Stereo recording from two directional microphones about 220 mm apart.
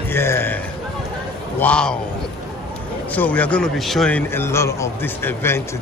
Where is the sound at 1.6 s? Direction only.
5° left (ahead or behind).